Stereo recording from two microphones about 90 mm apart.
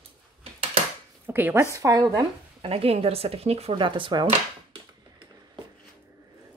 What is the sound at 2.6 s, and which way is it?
Speech, 90° right.